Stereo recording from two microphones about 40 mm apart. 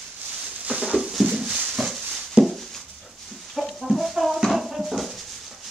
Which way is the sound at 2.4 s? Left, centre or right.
Centre.